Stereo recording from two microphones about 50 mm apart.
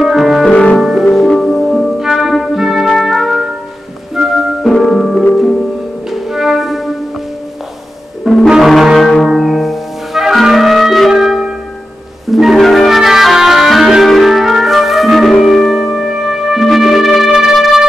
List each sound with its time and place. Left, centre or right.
0.0 s piano: centre
0.5 s music: left
0.7 s music: centre
1.3 s music: centre
2.0 s music: centre
4.6 s music: centre
8.5 s music: centre